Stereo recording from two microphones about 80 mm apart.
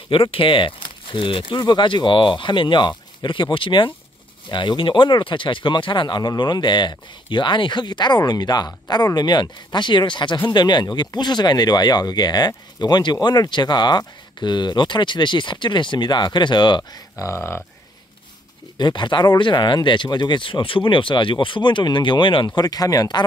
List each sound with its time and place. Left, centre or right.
0.1 s speech: left
4.5 s speech: left
10.5 s speech: left
17.2 s speech: left
18.8 s speech: left
22.6 s speech: left